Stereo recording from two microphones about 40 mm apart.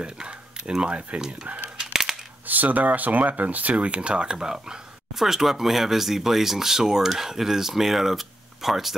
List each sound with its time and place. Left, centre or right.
0.0 s speech: right
1.8 s a sound: centre
2.4 s speech: right; by 4.7 s centre
5.2 s speech: centre